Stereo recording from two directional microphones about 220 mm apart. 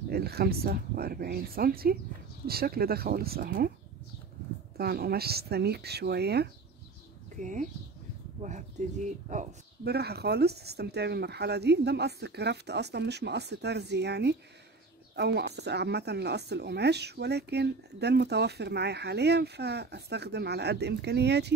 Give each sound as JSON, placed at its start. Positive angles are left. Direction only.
{"t": 0.1, "sound": "speech", "side_deg": -45}
{"t": 4.7, "sound": "speech", "side_deg": -45}
{"t": 7.4, "sound": "speech", "side_deg": -35}
{"t": 9.8, "sound": "speech", "side_deg": -45}